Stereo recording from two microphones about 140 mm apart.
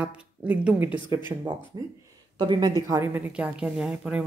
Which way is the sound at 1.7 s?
30° right (ahead or behind).